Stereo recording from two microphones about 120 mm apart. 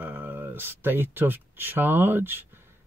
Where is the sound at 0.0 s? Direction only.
15° right (ahead or behind).